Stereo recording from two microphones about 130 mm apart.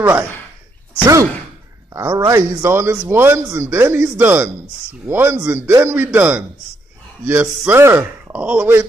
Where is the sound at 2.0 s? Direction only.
20° right (ahead or behind).